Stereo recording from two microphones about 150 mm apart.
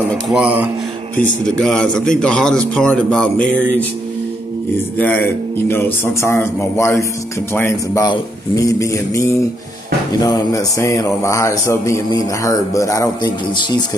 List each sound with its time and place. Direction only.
0.3 s speech: 10° right (ahead or behind)
1.1 s a man's voice: 10° left (ahead or behind)
4.9 s a man's voice: 10° left (ahead or behind)
8.1 s music: 20° left (ahead or behind)
10.2 s music: 20° left (ahead or behind)